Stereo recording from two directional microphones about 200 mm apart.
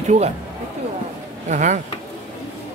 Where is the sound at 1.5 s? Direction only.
40° right (ahead or behind).